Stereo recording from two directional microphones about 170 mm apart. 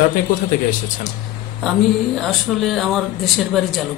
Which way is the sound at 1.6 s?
Centre (ahead or behind).